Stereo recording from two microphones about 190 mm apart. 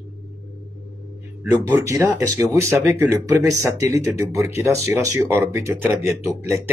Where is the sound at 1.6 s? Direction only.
15° right (ahead or behind).